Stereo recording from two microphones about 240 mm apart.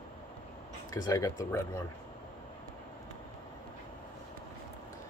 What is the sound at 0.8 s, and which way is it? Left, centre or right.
Speech, centre.